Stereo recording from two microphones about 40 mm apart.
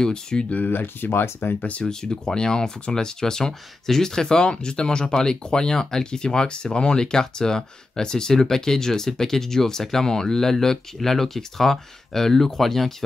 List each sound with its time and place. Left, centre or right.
0.0 s speech: centre
0.7 s speech: left
1.8 s speech: centre